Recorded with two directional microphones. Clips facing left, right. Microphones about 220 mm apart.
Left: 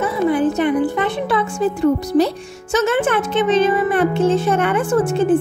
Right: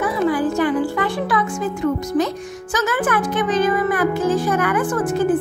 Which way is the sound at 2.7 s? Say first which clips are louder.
Left 4 dB; 25° left (ahead or behind).